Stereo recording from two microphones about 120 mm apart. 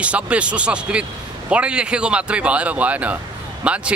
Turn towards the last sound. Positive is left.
turn(degrees=-10)  # may be behind; listen again after turning